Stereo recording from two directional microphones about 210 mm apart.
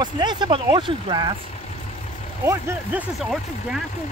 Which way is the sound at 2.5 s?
10° right (ahead or behind).